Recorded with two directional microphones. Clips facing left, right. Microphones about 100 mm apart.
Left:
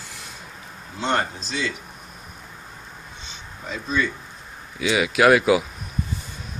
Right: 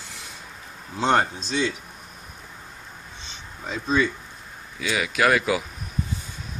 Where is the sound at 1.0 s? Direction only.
20° right (ahead or behind).